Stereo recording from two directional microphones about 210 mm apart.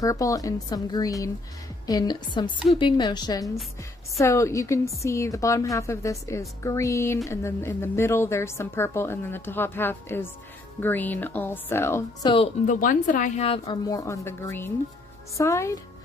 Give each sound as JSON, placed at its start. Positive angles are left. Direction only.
{"t": 0.0, "sound": "a woman's voice", "side_deg": 15}
{"t": 12.6, "sound": "a woman's voice", "side_deg": 40}